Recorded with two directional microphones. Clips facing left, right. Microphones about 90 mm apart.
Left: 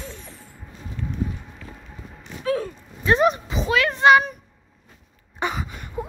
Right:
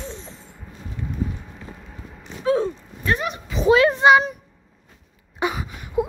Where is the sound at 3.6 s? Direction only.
20° right (ahead or behind).